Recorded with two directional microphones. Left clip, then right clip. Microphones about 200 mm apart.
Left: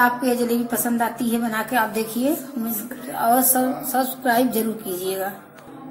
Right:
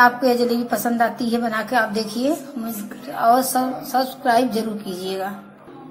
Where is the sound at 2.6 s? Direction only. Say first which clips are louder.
Even; 15° right (ahead or behind).